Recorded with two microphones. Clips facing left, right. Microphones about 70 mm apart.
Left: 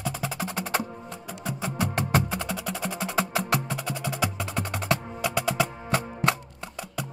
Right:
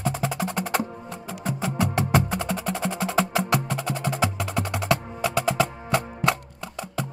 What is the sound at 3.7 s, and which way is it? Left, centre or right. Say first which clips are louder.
Wood block: right 4 dB; right.